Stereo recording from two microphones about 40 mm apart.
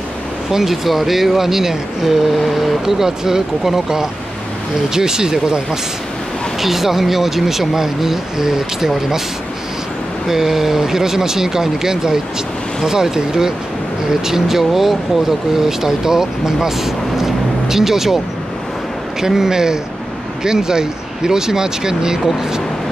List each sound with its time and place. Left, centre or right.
0.5 s speech: centre
6.6 s speech: centre
10.2 s speech: centre
19.2 s speech: centre